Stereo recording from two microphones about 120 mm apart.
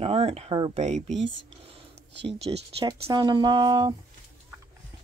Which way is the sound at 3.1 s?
40° right (ahead or behind).